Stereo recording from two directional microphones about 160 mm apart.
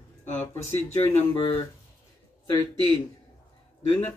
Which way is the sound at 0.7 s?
40° left (ahead or behind).